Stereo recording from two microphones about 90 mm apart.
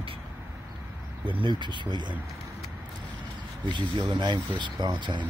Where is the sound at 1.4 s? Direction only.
60° right (ahead or behind).